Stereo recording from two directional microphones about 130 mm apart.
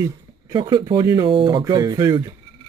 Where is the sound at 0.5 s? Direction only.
35° right (ahead or behind).